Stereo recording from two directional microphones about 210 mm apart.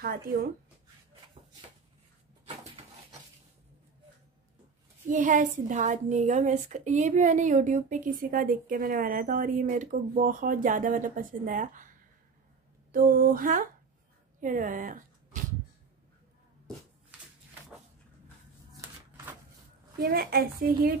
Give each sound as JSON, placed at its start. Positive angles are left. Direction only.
{"t": 0.0, "sound": "a woman's voice", "side_deg": -45}
{"t": 2.4, "sound": "a sound", "side_deg": -25}
{"t": 5.1, "sound": "a woman's voice", "side_deg": -40}
{"t": 12.9, "sound": "a woman's voice", "side_deg": -45}
{"t": 18.7, "sound": "a sound", "side_deg": -10}
{"t": 20.0, "sound": "a woman's voice", "side_deg": -50}